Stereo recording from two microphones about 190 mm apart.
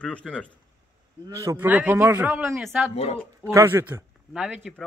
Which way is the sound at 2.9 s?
35° left (ahead or behind).